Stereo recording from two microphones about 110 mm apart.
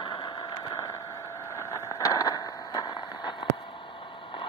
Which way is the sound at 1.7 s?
30° left (ahead or behind).